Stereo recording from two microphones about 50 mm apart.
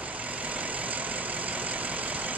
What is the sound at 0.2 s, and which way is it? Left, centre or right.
Vehicle, right.